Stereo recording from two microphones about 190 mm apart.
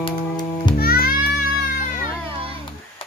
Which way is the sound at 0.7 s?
50° left (ahead or behind).